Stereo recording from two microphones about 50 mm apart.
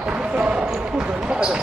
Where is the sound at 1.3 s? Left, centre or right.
Centre.